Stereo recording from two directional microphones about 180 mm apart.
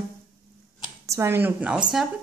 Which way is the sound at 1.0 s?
15° right (ahead or behind).